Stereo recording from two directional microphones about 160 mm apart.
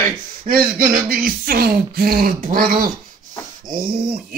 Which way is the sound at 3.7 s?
65° right (ahead or behind).